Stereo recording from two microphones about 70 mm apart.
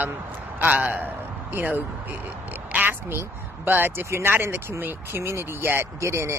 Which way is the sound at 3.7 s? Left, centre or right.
Right.